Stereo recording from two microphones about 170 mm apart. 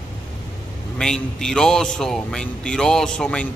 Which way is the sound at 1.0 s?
5° left (ahead or behind).